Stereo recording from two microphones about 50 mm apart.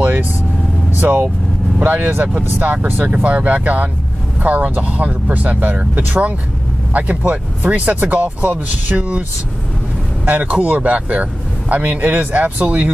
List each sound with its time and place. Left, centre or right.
0.0 s vehicle: right
0.9 s speech: right
10.2 s speech: right